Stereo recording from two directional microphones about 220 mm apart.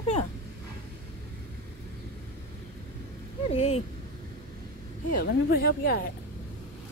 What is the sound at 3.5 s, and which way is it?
Speech, 25° left (ahead or behind).